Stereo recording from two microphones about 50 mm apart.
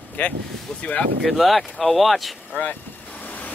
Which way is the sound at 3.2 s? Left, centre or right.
Left.